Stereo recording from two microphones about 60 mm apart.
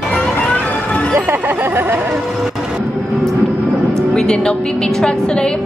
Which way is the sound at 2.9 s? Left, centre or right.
Centre.